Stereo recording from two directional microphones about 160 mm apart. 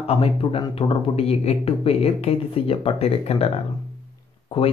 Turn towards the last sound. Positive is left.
turn(degrees=35)  # may be behind; listen again after turning